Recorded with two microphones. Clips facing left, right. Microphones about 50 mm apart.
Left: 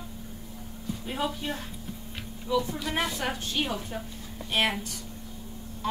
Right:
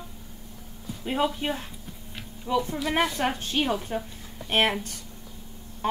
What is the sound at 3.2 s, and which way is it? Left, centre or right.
Speech, right.